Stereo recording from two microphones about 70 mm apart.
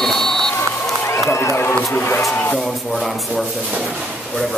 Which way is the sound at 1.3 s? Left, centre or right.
Left.